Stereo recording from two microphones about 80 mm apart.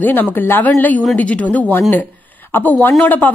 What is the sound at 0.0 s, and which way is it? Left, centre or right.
A woman's voice, left.